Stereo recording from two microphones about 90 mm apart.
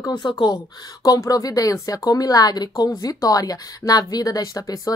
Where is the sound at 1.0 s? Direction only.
40° left (ahead or behind).